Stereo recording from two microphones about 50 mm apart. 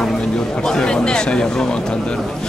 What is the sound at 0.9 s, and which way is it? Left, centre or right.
Speech, centre.